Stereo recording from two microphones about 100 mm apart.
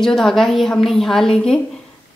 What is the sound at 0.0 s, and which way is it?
A woman's voice, 5° left (ahead or behind).